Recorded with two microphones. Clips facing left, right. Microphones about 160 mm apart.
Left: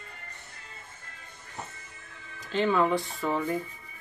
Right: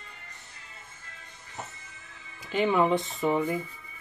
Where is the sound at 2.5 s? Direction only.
15° right (ahead or behind).